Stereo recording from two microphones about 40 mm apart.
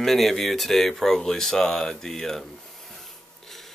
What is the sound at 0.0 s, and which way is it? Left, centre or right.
Speech, centre.